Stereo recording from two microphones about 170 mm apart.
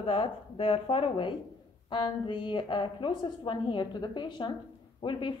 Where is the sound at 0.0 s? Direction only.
30° left (ahead or behind).